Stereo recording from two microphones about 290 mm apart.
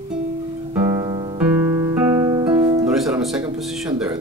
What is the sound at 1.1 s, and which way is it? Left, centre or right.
Music, centre.